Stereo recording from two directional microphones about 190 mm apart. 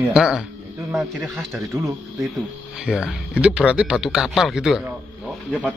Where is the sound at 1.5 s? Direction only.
15° right (ahead or behind).